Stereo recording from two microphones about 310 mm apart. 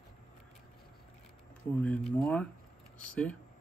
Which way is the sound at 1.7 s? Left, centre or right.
Centre.